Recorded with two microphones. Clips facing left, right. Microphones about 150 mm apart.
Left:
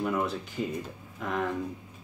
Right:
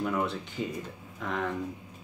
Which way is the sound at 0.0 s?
5° left (ahead or behind).